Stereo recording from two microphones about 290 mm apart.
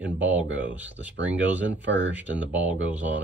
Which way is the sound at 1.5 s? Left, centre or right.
Centre.